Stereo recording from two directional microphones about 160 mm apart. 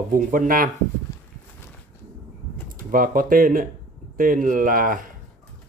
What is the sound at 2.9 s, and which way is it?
Speech, 60° right (ahead or behind).